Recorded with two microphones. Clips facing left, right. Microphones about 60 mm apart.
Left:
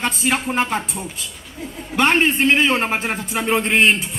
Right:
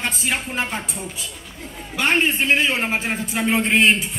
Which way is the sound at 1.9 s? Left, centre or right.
Left.